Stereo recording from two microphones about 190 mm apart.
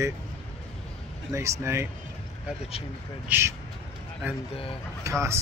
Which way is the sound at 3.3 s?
15° right (ahead or behind).